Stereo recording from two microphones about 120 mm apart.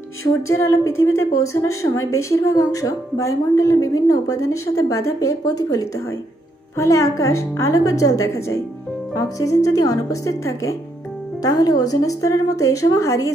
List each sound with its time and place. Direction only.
0.5 s a woman's voice: 25° left (ahead or behind)